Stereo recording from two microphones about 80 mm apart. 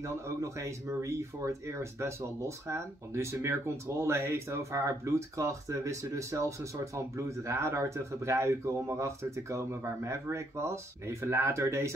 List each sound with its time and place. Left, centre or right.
0.0 s speech: right